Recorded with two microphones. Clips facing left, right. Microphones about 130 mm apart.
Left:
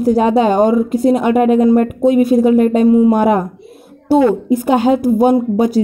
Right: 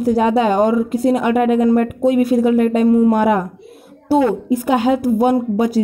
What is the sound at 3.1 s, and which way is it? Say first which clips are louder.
A woman's voice: left 2 dB; 30° left (ahead or behind).